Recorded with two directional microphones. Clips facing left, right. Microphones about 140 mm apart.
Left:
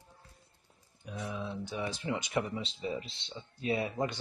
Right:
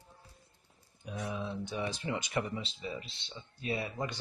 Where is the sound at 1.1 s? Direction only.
10° right (ahead or behind).